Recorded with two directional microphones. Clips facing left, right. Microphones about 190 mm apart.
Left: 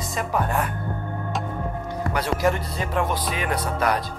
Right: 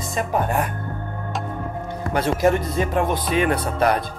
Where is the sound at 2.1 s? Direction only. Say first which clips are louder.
Right 5 dB; 25° right (ahead or behind).